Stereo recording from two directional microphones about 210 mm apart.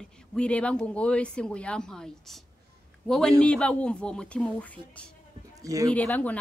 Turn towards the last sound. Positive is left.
turn(degrees=5)  # may be behind; listen again after turning